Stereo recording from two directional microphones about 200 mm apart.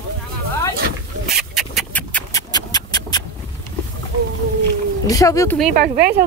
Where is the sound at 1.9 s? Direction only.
10° left (ahead or behind).